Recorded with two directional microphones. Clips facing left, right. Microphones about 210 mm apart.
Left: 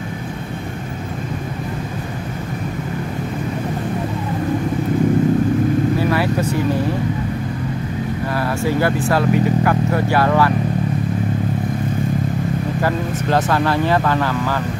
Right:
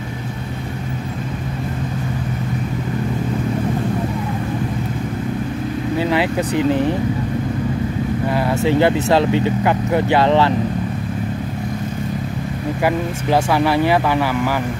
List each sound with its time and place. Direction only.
5.9 s vehicle: 20° right (ahead or behind)
8.4 s speech: 20° right (ahead or behind)
12.8 s speech: 15° right (ahead or behind)